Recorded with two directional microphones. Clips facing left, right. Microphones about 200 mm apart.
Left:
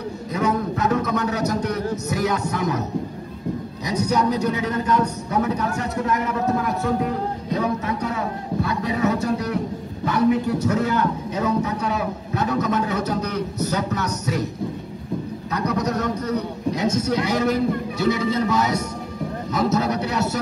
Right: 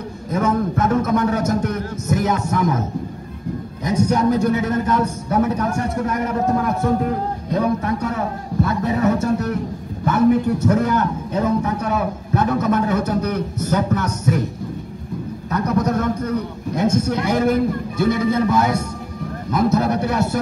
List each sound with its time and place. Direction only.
0.3 s a sound: 50° right (ahead or behind)
3.8 s a man's voice: 50° right (ahead or behind)
15.5 s a man's voice: 50° right (ahead or behind)